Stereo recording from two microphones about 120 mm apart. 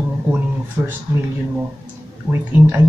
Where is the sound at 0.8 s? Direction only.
25° right (ahead or behind).